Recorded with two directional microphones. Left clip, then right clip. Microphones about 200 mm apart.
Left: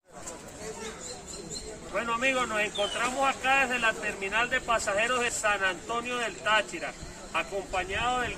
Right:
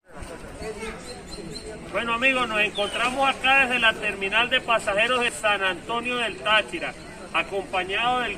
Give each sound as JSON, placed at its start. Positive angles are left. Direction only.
{"t": 2.0, "sound": "a man's voice", "side_deg": 0}